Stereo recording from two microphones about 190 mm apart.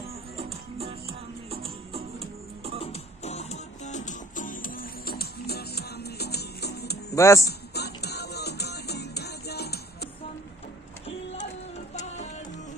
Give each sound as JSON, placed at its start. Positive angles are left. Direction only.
{"t": 0.4, "sound": "music", "side_deg": -30}
{"t": 2.8, "sound": "music", "side_deg": 35}
{"t": 7.1, "sound": "speech", "side_deg": 15}
{"t": 7.4, "sound": "music", "side_deg": 60}